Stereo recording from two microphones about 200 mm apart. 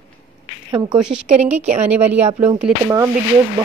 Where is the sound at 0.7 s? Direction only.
20° right (ahead or behind).